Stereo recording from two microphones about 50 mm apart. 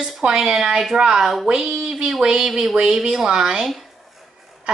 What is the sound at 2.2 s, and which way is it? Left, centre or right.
A child's voice, centre.